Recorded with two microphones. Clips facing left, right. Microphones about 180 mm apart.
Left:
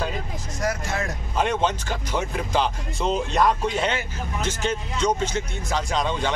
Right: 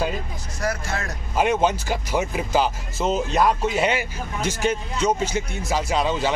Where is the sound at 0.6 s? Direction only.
20° left (ahead or behind).